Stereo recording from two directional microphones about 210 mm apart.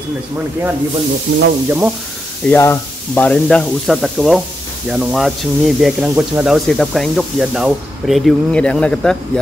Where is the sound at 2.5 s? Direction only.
10° left (ahead or behind).